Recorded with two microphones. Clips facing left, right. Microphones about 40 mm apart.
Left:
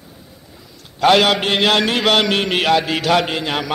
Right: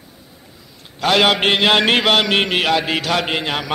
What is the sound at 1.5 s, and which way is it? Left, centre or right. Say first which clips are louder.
A man's voice: right 1 dB; centre.